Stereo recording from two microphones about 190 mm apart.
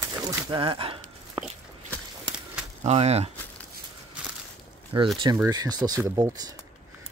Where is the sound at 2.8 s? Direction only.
35° right (ahead or behind).